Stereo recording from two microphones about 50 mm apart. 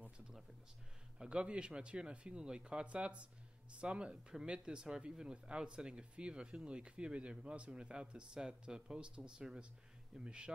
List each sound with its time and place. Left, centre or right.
1.1 s speech: centre